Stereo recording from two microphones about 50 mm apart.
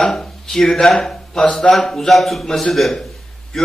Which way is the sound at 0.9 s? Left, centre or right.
Centre.